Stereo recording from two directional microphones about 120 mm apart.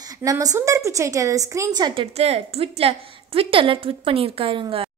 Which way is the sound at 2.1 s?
60° right (ahead or behind).